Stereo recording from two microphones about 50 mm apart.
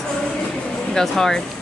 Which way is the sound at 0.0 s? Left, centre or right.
Centre.